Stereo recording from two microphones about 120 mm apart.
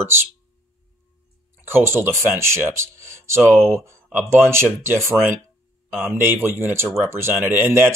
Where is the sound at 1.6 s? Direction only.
20° right (ahead or behind).